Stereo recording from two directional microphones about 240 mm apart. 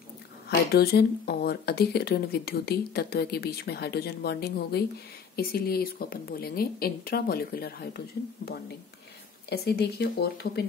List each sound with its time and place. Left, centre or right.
0.7 s speech: left
9.5 s speech: left